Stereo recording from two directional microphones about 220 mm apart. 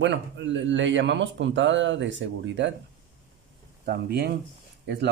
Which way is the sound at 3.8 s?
45° right (ahead or behind).